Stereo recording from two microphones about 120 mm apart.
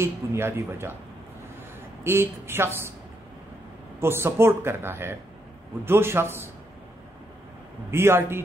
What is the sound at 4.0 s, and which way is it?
Speech, 20° right (ahead or behind).